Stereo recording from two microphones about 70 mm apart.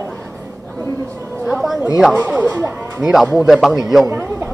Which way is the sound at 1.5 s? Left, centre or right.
Centre.